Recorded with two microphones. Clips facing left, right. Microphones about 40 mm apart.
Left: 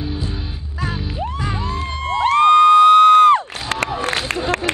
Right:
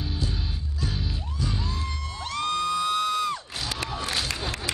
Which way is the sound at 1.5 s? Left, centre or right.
Left.